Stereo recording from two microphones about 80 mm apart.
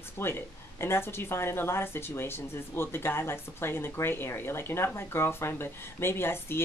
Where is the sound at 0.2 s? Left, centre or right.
Left.